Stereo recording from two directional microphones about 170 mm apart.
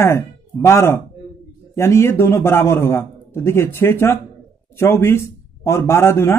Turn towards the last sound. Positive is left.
turn(degrees=15)  # may be behind; listen again after turning